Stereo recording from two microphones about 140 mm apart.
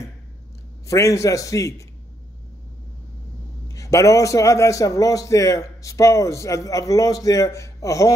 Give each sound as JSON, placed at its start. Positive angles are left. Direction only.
{"t": 0.8, "sound": "a man's voice", "side_deg": 25}
{"t": 3.6, "sound": "a man's voice", "side_deg": 20}